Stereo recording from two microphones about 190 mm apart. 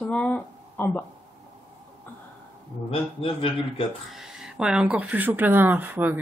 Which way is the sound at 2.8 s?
30° left (ahead or behind).